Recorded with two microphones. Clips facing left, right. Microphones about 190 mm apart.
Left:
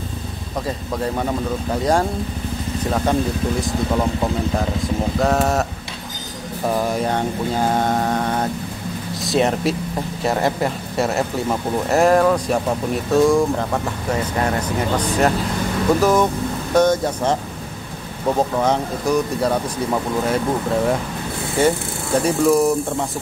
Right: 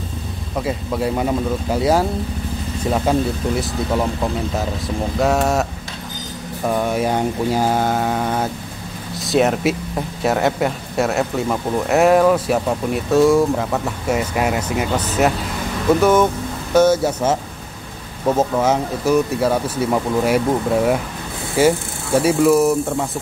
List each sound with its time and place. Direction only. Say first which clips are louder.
0.7 s speech: right 3 dB; 10° right (ahead or behind)
3.6 s a man's voice: even; centre (ahead or behind)
5.2 s a man's voice: right 2 dB; centre (ahead or behind)
6.7 s a man's voice: right 2 dB; centre (ahead or behind)